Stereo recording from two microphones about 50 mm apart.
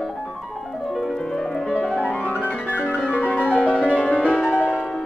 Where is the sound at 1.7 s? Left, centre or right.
Left.